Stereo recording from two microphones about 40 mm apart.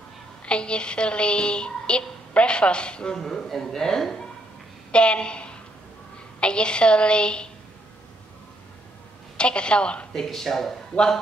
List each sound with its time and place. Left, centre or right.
0.5 s a woman's voice: left
3.2 s speech: centre
4.9 s a woman's voice: left
9.4 s a woman's voice: left
10.1 s speech: centre